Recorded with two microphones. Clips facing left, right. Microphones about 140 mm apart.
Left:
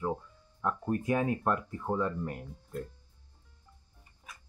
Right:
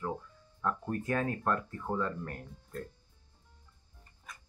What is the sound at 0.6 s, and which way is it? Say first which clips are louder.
Speech: left 2 dB; 15° left (ahead or behind).